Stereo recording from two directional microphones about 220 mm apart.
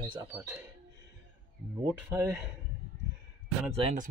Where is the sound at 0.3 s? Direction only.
10° right (ahead or behind).